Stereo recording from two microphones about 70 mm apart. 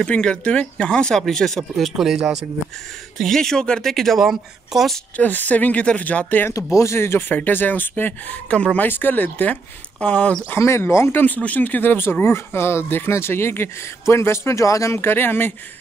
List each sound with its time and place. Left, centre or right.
0.0 s speech: centre
3.2 s speech: centre
5.1 s speech: left
6.5 s speech: left; by 10.3 s centre
10.6 s speech: left
15.0 s speech: left